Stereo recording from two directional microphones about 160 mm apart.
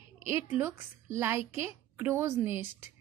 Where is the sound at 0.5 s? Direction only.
15° right (ahead or behind).